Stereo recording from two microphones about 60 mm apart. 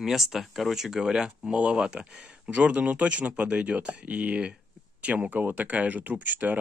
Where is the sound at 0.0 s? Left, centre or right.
Centre.